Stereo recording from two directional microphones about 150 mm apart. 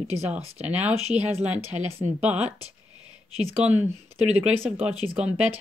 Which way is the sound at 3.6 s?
10° right (ahead or behind).